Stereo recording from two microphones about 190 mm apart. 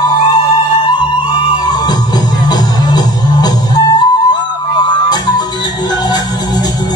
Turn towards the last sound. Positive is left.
turn(degrees=20)  # may be behind; listen again after turning